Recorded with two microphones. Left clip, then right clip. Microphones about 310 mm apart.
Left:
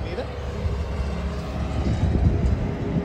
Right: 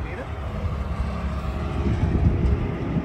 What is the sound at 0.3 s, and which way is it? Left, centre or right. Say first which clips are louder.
Vehicle: left 1 dB; left.